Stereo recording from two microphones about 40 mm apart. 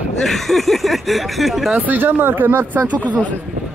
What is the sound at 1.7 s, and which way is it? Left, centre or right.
Speech, right.